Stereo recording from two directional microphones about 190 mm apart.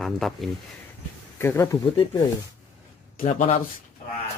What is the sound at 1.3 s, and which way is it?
Speech, 10° left (ahead or behind).